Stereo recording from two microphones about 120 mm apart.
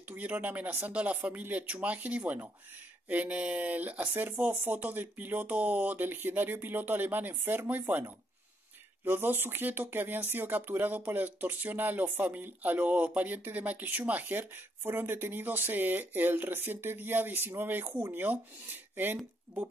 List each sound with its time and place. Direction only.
0.1 s speech: 15° right (ahead or behind)
9.0 s speech: 15° right (ahead or behind)